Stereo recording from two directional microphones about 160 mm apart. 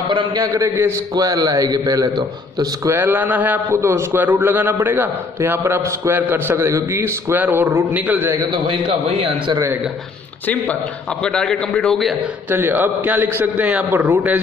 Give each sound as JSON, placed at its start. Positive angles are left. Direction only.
{"t": 0.1, "sound": "a man's voice", "side_deg": -25}
{"t": 10.4, "sound": "a man's voice", "side_deg": 10}
{"t": 12.4, "sound": "a man's voice", "side_deg": -15}